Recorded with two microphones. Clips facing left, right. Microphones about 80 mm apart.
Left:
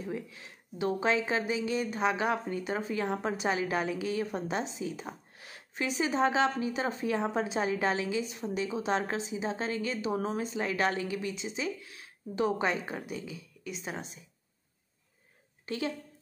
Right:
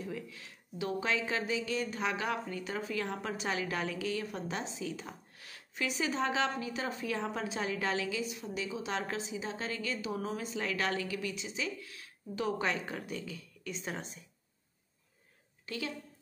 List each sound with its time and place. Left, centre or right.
0.0 s speech: left; by 14.2 s centre
15.6 s a woman's voice: left